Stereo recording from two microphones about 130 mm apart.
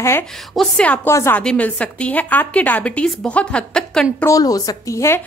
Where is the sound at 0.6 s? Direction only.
10° left (ahead or behind).